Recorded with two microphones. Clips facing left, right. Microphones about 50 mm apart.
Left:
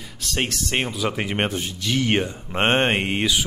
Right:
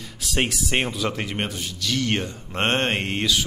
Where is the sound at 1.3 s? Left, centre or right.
Left.